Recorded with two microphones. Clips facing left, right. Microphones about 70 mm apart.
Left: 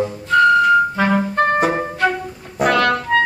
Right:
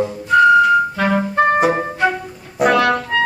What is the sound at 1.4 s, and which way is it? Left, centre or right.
Music, centre.